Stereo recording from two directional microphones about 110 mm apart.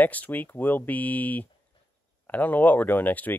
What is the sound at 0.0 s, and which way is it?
Speech, 15° left (ahead or behind).